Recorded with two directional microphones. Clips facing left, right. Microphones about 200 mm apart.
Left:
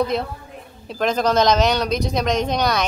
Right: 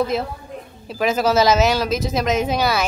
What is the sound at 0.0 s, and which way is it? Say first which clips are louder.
A woman's voice: even; centre (ahead or behind).